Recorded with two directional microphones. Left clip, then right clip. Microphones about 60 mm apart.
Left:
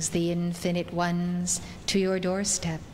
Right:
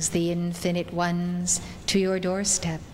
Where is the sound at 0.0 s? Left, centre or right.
Left.